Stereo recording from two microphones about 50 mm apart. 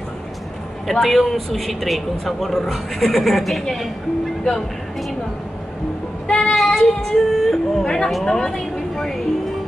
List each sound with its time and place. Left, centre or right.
0.8 s speech: centre
6.2 s child singing: centre
6.5 s child singing: centre
8.1 s a woman's voice: centre